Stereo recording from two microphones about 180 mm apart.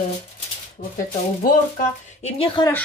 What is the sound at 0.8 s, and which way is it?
Speech, 50° left (ahead or behind).